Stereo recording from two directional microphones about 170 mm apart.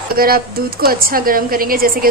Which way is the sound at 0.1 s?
60° right (ahead or behind).